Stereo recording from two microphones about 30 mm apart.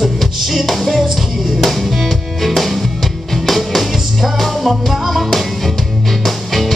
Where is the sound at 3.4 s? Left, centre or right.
Centre.